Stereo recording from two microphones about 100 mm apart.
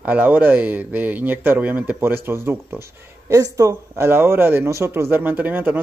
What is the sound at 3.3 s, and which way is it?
Speech, 35° right (ahead or behind).